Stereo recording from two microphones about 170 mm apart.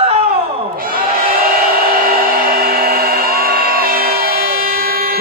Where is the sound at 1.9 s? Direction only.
60° right (ahead or behind).